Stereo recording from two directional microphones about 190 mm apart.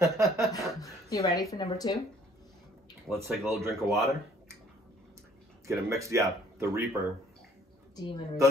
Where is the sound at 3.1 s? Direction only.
15° right (ahead or behind).